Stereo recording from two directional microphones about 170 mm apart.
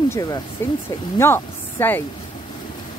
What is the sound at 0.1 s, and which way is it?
Speech, 20° left (ahead or behind).